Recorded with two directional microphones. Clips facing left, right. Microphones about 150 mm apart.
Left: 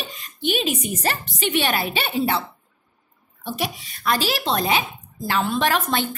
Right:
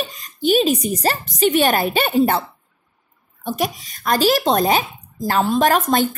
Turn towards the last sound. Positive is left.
turn(degrees=-45)  # may be behind; listen again after turning